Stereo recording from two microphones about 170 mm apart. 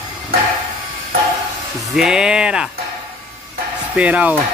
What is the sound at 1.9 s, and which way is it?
Speech, 5° right (ahead or behind).